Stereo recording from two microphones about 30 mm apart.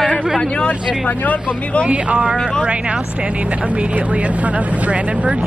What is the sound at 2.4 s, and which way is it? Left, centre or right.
Speech, left.